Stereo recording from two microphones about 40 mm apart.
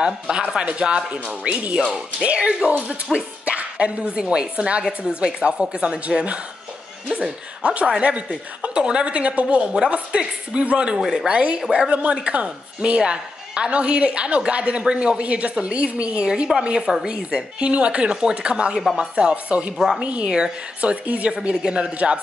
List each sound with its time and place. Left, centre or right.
0.0 s a woman's voice: right
3.1 s speech: centre
3.4 s a sound: right
4.2 s a woman's voice: right
4.8 s a woman's voice: centre
7.6 s a woman's voice: right
11.0 s speech: centre
11.2 s a woman's voice: right
20.8 s a woman's voice: right